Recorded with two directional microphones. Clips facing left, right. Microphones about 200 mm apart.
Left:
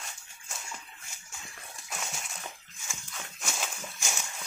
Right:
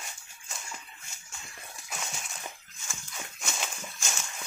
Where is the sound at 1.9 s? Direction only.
Centre (ahead or behind).